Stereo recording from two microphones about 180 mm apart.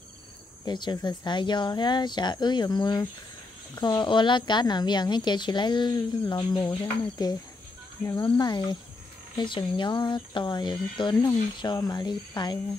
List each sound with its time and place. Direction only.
0.7 s a woman's voice: 25° left (ahead or behind)